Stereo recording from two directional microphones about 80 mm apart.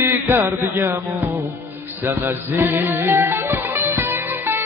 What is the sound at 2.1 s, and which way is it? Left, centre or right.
Music, right.